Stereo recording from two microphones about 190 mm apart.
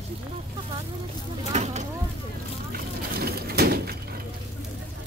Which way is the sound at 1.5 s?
40° right (ahead or behind).